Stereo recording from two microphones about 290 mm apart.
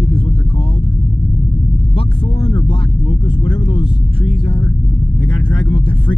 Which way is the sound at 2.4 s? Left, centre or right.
Centre.